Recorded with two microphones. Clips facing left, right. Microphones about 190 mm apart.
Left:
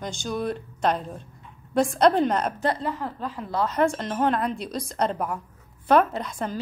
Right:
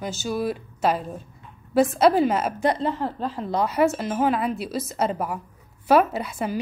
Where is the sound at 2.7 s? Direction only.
25° right (ahead or behind).